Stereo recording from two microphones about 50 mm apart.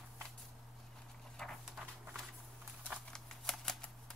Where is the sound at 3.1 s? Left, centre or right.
Centre.